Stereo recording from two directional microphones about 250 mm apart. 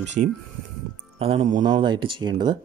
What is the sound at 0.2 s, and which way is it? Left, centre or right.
Speech, right.